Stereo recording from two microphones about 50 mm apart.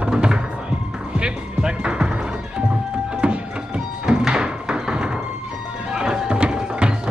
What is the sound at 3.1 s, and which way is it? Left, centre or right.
Music, right.